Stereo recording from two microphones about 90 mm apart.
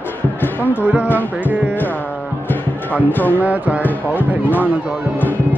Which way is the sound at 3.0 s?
20° left (ahead or behind).